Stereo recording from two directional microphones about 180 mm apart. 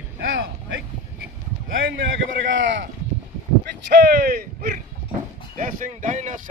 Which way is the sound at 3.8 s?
65° right (ahead or behind).